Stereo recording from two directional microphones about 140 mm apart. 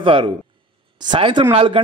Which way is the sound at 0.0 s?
40° right (ahead or behind).